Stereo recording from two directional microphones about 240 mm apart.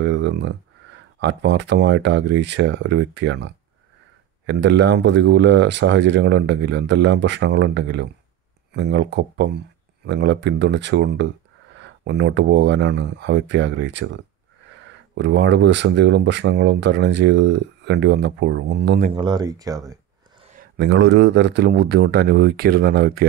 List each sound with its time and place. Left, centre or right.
0.0 s a sound: right
1.2 s speech: right
19.1 s speech: centre
20.7 s speech: right